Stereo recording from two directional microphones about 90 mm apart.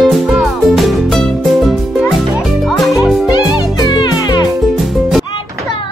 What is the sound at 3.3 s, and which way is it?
Music, 55° left (ahead or behind).